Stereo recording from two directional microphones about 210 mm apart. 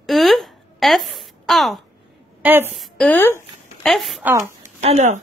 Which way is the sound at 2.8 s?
5° left (ahead or behind).